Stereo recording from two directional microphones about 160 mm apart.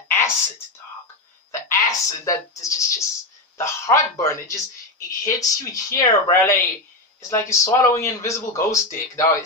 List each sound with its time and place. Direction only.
0.1 s a man's voice: 15° left (ahead or behind)